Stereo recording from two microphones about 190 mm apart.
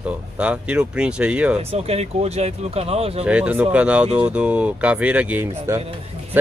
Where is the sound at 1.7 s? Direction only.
30° right (ahead or behind).